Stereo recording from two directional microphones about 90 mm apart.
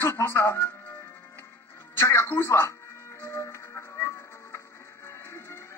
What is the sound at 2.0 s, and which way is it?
Music, 30° left (ahead or behind).